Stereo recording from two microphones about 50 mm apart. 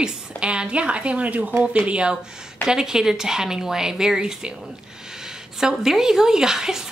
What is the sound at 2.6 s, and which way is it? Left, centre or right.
A woman's voice, centre.